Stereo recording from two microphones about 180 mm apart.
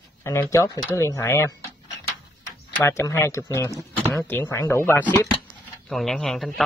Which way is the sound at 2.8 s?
15° left (ahead or behind).